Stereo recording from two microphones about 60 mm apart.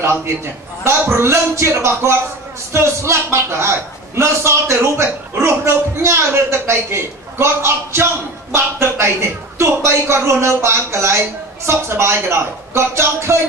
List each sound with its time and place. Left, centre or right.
0.8 s a man's voice: right